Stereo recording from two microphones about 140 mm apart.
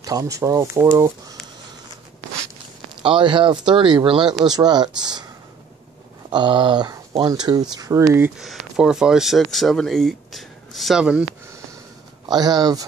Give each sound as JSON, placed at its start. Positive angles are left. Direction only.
{"t": 0.0, "sound": "speech", "side_deg": -25}
{"t": 3.0, "sound": "speech", "side_deg": -35}
{"t": 6.3, "sound": "speech", "side_deg": -35}
{"t": 8.4, "sound": "speech", "side_deg": -5}
{"t": 12.3, "sound": "speech", "side_deg": -30}